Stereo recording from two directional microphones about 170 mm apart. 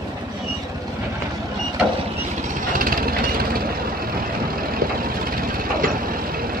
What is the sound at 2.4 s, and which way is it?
Vehicle, 50° right (ahead or behind).